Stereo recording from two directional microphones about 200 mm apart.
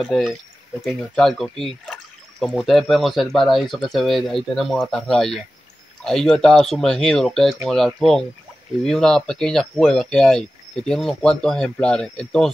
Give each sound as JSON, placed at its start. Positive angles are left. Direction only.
{"t": 0.0, "sound": "speech", "side_deg": 0}